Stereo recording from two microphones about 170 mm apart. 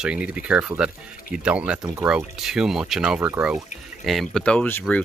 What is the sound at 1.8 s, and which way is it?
Speech, 20° right (ahead or behind).